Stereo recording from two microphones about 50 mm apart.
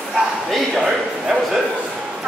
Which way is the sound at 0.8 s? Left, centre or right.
Centre.